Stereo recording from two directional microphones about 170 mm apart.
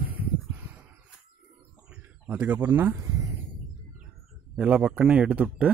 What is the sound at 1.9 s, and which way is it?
Speech, 10° right (ahead or behind).